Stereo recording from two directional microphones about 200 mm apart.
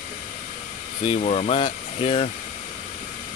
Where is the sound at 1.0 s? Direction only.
30° left (ahead or behind).